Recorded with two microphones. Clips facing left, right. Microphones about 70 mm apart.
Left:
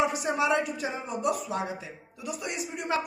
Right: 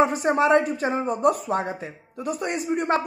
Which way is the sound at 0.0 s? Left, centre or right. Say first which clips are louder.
Right 6 dB; right.